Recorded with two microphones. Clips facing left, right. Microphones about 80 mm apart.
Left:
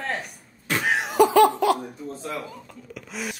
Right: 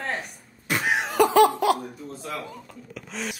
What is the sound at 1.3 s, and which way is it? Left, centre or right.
Laughter, centre.